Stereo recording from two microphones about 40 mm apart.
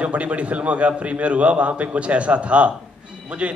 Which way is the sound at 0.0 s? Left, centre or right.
Right.